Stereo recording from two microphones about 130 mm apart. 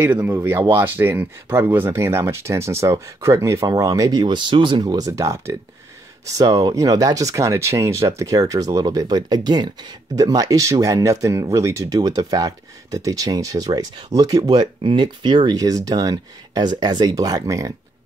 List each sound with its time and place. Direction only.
0.0 s speech: 15° right (ahead or behind)